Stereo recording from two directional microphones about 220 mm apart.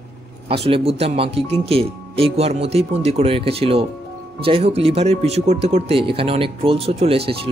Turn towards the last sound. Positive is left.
turn(degrees=-25)  # may be behind; listen again after turning